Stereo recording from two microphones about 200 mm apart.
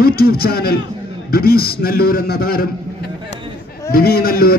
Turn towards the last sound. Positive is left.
turn(degrees=50)  # may be behind; listen again after turning